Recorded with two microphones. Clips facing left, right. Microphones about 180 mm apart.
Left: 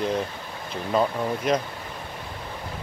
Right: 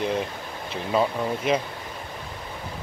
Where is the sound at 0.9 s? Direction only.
5° right (ahead or behind).